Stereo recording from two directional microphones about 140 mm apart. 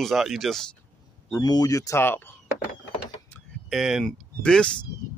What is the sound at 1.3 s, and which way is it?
Speech, 30° left (ahead or behind).